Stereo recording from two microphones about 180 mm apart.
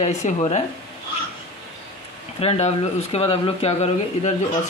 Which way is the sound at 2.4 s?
35° left (ahead or behind).